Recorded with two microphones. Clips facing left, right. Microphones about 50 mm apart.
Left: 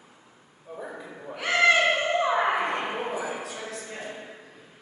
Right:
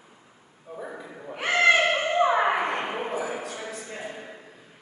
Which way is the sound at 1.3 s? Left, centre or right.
Right.